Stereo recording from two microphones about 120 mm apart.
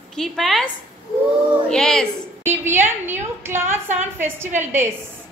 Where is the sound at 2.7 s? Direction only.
20° right (ahead or behind).